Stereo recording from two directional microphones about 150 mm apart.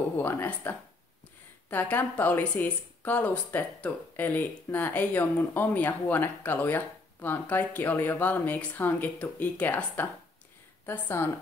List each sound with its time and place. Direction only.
0.2 s speech: 15° left (ahead or behind)